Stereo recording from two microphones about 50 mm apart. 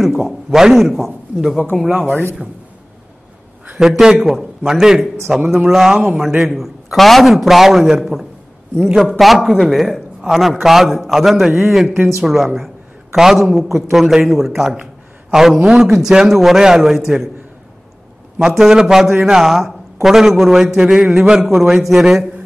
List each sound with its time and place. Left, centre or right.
0.0 s a man's voice: centre
1.9 s speech: right
4.0 s a man's voice: centre
18.5 s a man's voice: centre